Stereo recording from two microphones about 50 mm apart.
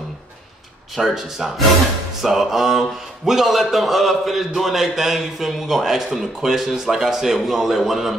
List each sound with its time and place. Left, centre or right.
0.9 s a man's voice: centre